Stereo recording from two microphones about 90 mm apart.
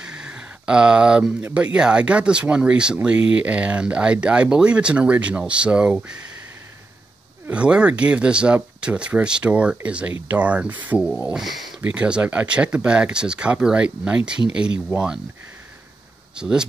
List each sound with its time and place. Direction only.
0.0 s a sound: 10° right (ahead or behind)
1.5 s speech: 15° right (ahead or behind)
7.4 s speech: 10° right (ahead or behind)
11.2 s speech: 5° right (ahead or behind)
11.8 s speech: 10° right (ahead or behind)
16.3 s speech: 10° right (ahead or behind)